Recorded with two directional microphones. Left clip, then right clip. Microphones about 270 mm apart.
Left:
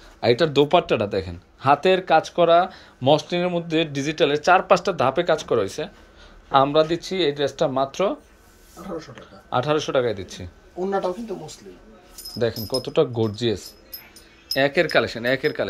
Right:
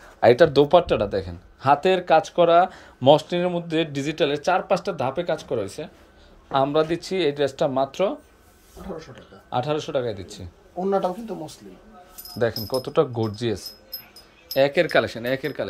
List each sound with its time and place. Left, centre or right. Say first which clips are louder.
0.2 s a man's voice: right 3 dB; centre
10.9 s speech: right 2 dB; right
12.4 s a man's voice: even; centre